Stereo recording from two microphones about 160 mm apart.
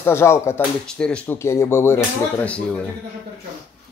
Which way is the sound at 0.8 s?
5° left (ahead or behind).